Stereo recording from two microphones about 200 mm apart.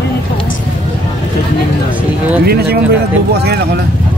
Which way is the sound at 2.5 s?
55° right (ahead or behind).